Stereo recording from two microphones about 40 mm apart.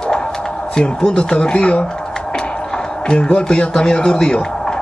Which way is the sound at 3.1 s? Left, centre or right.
Left.